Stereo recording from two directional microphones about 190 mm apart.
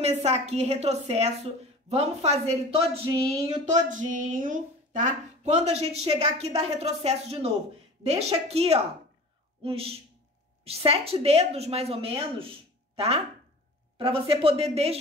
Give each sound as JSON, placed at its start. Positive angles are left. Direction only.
{"t": 0.0, "sound": "a woman's voice", "side_deg": -35}